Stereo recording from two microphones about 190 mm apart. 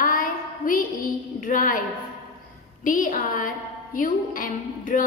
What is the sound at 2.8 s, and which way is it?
A woman's voice, 45° left (ahead or behind).